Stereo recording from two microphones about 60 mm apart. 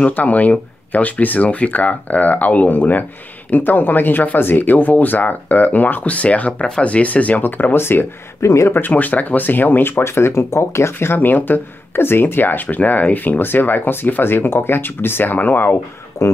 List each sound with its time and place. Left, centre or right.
0.0 s speech: left
8.5 s speech: left
8.7 s speech: left
16.2 s speech: left